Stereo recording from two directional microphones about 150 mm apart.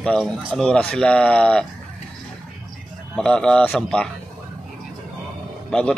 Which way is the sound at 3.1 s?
5° left (ahead or behind).